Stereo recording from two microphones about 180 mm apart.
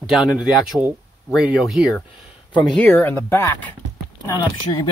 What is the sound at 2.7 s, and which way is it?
Speech, 10° left (ahead or behind).